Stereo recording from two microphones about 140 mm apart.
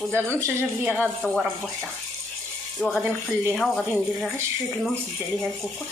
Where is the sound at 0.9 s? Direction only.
Centre (ahead or behind).